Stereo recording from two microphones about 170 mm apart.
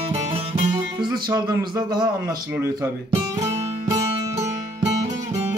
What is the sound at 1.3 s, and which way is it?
Speech, 25° right (ahead or behind).